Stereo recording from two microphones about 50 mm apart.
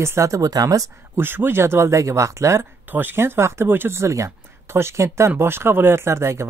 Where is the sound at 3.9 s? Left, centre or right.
Right.